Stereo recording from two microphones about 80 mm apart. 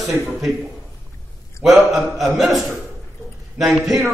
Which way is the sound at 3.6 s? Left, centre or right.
Centre.